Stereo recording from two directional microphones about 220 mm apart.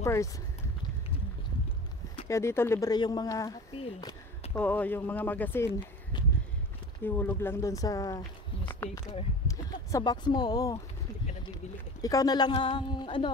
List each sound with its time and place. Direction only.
0.0 s speech: 15° left (ahead or behind)
2.2 s speech: 15° left (ahead or behind)
3.7 s a sound: 25° left (ahead or behind)
4.6 s speech: 5° left (ahead or behind)
7.0 s speech: 10° left (ahead or behind)
8.6 s a sound: 10° left (ahead or behind)
9.5 s speech: 15° left (ahead or behind)
12.0 s a woman's voice: 15° left (ahead or behind)